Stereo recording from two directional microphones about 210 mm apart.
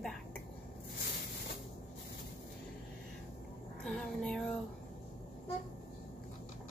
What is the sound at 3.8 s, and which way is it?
Speech, centre (ahead or behind).